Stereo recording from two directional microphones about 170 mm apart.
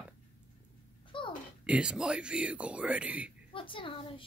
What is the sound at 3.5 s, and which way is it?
Speech, 30° left (ahead or behind).